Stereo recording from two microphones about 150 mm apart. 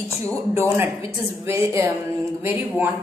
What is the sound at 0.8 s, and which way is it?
A woman's voice, 15° right (ahead or behind).